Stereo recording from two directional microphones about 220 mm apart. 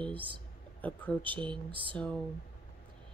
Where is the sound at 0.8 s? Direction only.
5° left (ahead or behind).